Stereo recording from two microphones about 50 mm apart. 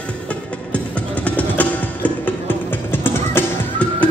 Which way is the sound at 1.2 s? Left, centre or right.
Left.